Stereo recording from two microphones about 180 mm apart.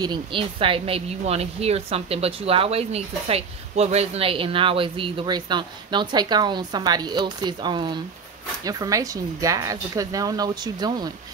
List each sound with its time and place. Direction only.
0.0 s speech: 25° right (ahead or behind)